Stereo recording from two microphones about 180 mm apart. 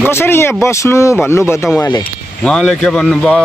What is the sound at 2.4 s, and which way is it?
Speech, 5° left (ahead or behind).